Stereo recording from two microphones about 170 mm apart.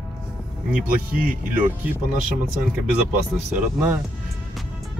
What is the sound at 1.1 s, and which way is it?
Speech, 55° right (ahead or behind).